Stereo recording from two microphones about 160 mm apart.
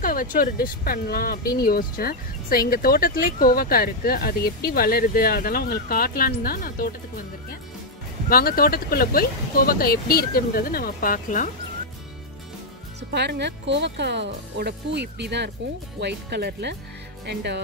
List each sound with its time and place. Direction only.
0.0 s speech: 60° left (ahead or behind)
8.3 s speech: 70° left (ahead or behind)
13.1 s speech: 90° right